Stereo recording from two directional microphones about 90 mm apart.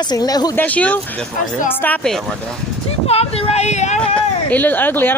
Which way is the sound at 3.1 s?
90° left.